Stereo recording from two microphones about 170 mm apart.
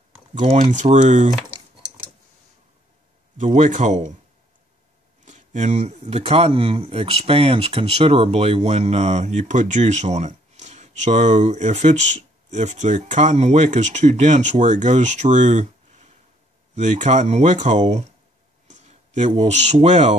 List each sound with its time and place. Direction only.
0.3 s speech: 45° right (ahead or behind)
3.3 s speech: 45° right (ahead or behind)
5.2 s speech: 45° right (ahead or behind)